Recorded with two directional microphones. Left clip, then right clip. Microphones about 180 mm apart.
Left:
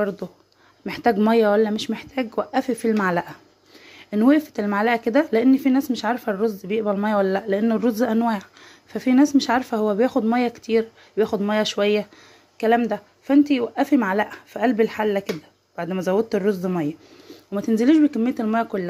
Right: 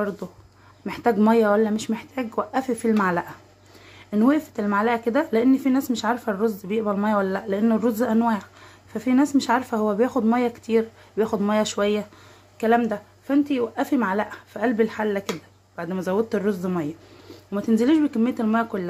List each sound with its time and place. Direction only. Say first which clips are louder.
0.8 s speech: left 1 dB; 20° left (ahead or behind)